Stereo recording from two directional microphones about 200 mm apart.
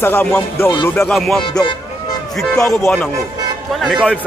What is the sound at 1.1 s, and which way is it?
A man's voice, centre (ahead or behind).